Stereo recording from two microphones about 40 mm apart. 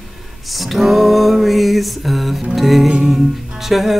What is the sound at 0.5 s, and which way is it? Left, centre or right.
Music, centre.